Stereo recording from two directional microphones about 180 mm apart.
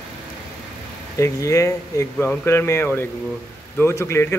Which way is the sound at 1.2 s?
15° left (ahead or behind).